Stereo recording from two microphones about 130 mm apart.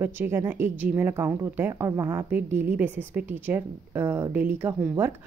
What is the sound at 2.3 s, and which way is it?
Speech, 15° right (ahead or behind).